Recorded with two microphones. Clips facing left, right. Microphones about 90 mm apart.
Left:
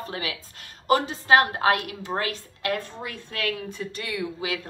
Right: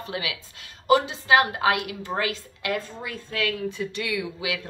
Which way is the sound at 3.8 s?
40° left (ahead or behind).